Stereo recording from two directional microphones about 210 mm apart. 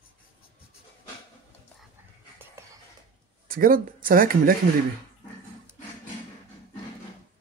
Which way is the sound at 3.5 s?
40° right (ahead or behind).